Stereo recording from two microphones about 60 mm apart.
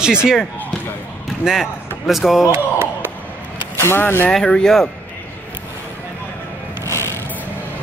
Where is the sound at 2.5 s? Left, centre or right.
Right.